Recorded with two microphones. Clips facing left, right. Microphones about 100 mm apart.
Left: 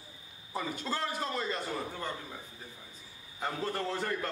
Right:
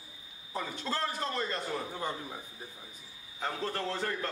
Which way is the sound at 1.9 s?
15° right (ahead or behind).